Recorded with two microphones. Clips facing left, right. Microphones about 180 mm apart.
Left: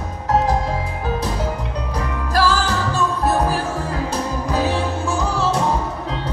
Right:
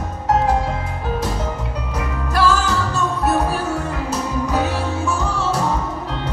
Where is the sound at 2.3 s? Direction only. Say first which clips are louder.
Right 1 dB; 30° left (ahead or behind).